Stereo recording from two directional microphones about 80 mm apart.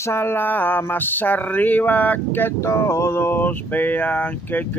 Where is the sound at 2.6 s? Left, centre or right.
Left.